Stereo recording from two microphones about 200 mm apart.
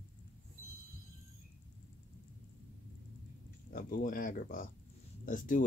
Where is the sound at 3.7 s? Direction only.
45° left (ahead or behind).